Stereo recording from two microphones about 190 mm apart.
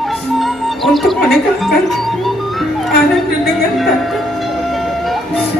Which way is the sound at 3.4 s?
Centre (ahead or behind).